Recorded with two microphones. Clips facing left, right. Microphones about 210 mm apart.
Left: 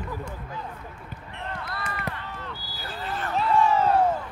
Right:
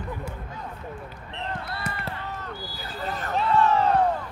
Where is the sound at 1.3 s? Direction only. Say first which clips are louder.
Right 2 dB; 25° right (ahead or behind).